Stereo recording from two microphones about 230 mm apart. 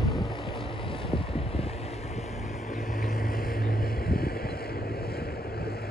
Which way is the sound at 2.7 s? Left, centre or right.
Left.